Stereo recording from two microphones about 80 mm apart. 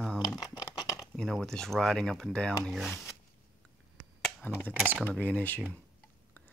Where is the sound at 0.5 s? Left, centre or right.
Left.